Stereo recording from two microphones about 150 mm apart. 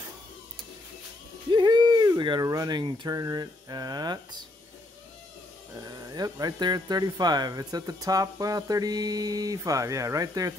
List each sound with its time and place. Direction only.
1.5 s speech: 30° right (ahead or behind)
5.8 s speech: 25° right (ahead or behind)